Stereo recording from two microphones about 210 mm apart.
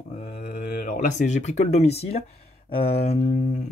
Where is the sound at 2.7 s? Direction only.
25° left (ahead or behind).